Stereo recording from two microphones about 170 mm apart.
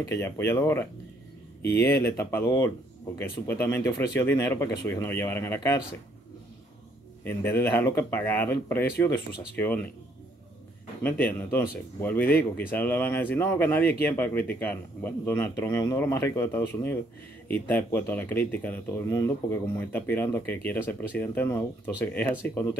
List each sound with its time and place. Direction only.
0.0 s speech: 15° left (ahead or behind)
7.2 s speech: 15° left (ahead or behind)
11.0 s speech: 10° left (ahead or behind)